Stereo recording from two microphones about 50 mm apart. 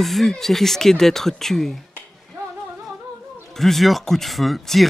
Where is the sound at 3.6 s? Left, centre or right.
Centre.